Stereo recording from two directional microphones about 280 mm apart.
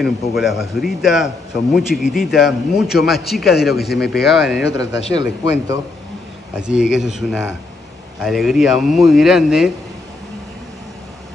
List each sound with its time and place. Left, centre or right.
0.0 s a man's voice: centre
4.6 s speech: left
5.1 s speech: centre
6.5 s a man's voice: centre